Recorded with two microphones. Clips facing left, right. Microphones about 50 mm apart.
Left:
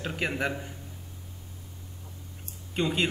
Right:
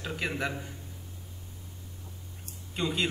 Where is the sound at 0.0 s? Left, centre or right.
Left.